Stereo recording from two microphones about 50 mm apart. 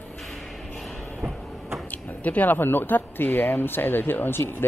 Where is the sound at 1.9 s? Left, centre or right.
Left.